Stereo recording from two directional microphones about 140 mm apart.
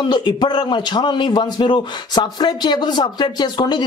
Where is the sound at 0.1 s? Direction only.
35° left (ahead or behind).